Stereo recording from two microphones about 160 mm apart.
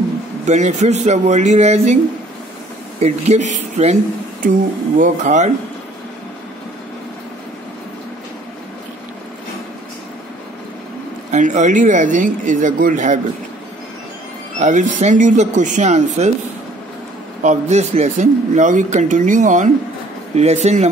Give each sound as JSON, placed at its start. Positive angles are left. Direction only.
{"t": 0.5, "sound": "speech", "side_deg": -50}
{"t": 3.0, "sound": "speech", "side_deg": -45}
{"t": 11.3, "sound": "speech", "side_deg": -50}
{"t": 14.6, "sound": "speech", "side_deg": -50}
{"t": 17.4, "sound": "speech", "side_deg": -45}